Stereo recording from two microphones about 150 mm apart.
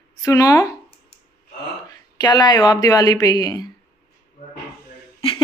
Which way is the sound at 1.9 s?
25° left (ahead or behind).